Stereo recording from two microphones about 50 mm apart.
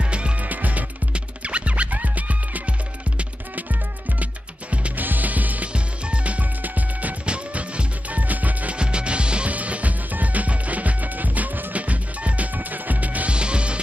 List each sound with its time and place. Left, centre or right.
0.0 s music: right
0.5 s music: right
4.2 s music: right
8.7 s music: centre